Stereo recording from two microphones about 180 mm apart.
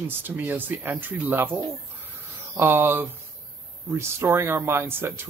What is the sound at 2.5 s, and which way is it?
Speech, 15° right (ahead or behind).